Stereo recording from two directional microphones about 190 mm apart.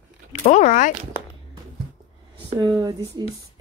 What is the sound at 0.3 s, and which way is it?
Speech, 40° left (ahead or behind).